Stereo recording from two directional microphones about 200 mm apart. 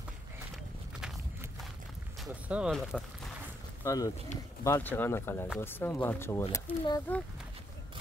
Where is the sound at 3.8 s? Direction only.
15° left (ahead or behind).